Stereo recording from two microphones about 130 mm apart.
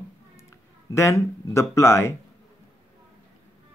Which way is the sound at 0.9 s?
20° left (ahead or behind).